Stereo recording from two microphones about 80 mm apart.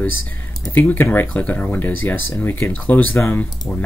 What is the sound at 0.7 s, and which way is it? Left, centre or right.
Speech, left.